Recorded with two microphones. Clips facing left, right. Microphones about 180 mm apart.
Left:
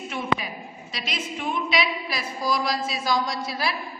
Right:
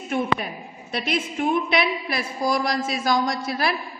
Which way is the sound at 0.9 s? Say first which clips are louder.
Right 7 dB; 55° right (ahead or behind).